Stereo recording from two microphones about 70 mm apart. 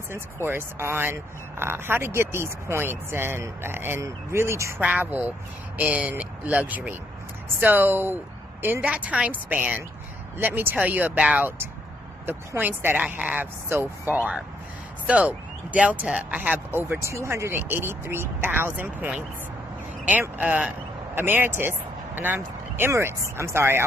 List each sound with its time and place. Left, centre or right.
0.1 s speech: right
4.7 s speech: right
12.3 s speech: right
15.0 s speech: centre
16.5 s speech: right
17.0 s speech: right
20.1 s speech: right